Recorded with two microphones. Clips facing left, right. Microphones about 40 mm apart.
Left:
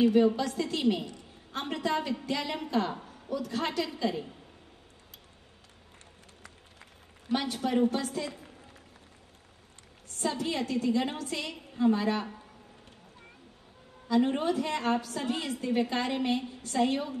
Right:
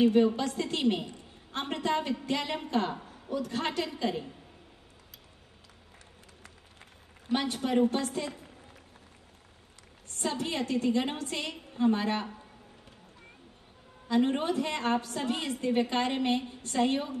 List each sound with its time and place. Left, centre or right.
0.4 s a woman's voice: right
7.2 s a woman's voice: right
10.0 s a woman's voice: right
14.0 s a woman's voice: right